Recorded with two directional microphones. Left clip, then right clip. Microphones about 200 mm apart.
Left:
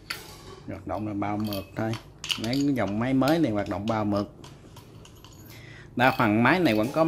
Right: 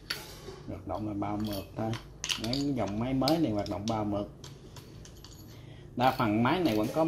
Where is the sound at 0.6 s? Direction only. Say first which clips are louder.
Left 4 dB; 20° left (ahead or behind).